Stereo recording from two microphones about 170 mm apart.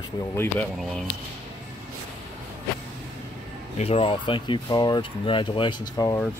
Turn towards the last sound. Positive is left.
turn(degrees=25)  # may be behind; listen again after turning